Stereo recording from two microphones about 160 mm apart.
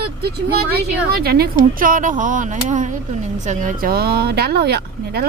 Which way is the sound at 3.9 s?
75° right (ahead or behind).